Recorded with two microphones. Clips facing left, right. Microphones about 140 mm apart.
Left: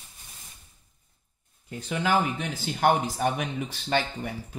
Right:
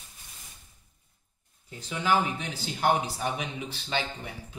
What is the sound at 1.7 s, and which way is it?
Speech, 55° left (ahead or behind).